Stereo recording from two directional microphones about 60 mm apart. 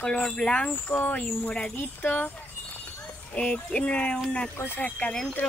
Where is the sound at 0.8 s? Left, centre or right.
Left.